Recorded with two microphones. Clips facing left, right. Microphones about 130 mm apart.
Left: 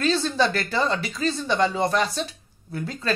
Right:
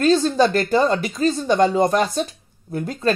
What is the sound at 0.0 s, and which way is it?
Speech, 45° right (ahead or behind).